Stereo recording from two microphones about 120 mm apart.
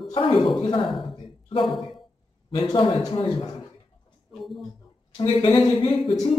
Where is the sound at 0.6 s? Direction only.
45° left (ahead or behind).